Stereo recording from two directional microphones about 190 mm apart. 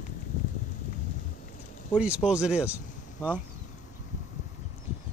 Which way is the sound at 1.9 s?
5° right (ahead or behind).